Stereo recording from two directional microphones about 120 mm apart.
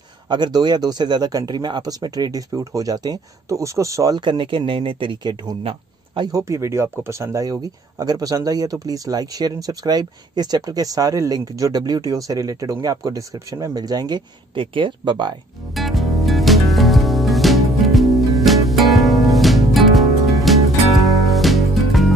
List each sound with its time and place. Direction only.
0.3 s speech: 40° right (ahead or behind)
6.4 s speech: 25° right (ahead or behind); by 15.3 s 40° right (ahead or behind)
15.7 s music: centre (ahead or behind)